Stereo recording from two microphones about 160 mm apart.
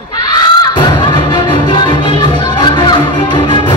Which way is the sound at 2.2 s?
30° left (ahead or behind).